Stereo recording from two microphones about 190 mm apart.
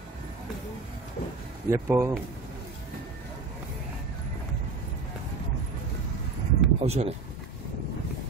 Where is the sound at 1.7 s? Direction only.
15° right (ahead or behind).